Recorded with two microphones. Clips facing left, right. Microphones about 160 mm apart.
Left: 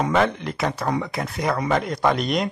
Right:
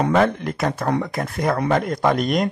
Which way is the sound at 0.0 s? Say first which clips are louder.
Right 3 dB; 50° right (ahead or behind).